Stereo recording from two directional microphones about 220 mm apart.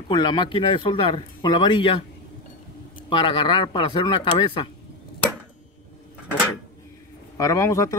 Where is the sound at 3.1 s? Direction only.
25° left (ahead or behind).